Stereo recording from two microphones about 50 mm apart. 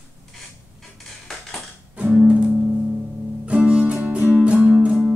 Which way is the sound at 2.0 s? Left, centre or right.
Right.